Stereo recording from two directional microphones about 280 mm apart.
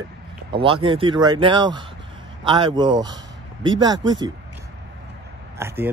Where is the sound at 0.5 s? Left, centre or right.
Centre.